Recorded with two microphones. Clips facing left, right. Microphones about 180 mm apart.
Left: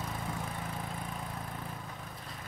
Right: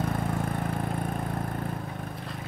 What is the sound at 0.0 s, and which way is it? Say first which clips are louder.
Vehicle: right 9 dB; 60° right (ahead or behind).